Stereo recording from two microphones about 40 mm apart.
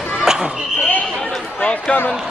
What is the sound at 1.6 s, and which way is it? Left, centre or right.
Basketball bounce, left.